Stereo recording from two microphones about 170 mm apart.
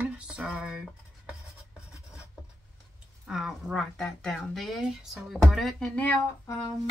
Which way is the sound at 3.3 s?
Centre (ahead or behind).